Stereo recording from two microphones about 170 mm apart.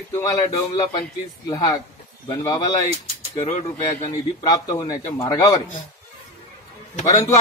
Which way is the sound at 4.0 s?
20° left (ahead or behind).